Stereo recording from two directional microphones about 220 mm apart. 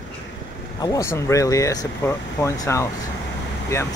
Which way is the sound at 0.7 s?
15° left (ahead or behind).